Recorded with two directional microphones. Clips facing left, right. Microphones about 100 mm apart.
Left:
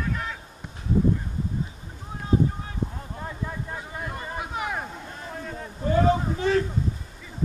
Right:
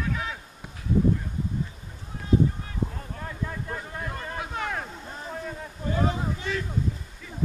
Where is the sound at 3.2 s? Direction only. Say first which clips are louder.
Left 1 dB; 15° left (ahead or behind).